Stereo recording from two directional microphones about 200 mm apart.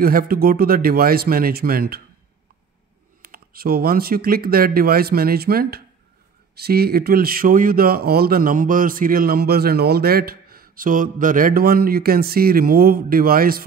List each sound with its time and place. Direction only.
0.0 s speech: 45° right (ahead or behind)
3.2 s speech: 45° right (ahead or behind)